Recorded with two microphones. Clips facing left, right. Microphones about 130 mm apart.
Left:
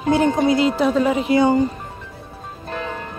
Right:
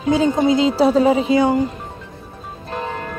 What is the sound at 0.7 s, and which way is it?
Speech, 35° right (ahead or behind).